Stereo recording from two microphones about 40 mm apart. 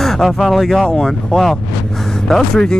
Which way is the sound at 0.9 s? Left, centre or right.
Centre.